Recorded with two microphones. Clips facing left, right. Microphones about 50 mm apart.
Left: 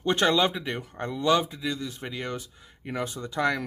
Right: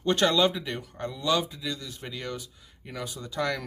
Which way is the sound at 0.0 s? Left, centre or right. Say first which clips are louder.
Even; left.